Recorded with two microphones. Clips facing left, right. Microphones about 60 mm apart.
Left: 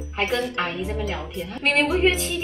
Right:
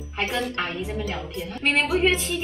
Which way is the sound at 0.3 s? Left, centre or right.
Centre.